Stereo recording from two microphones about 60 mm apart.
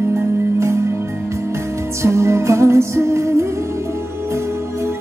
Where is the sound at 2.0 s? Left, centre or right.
Right.